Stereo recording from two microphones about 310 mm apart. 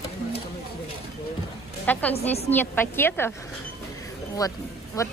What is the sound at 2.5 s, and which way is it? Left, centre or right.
Speech, centre.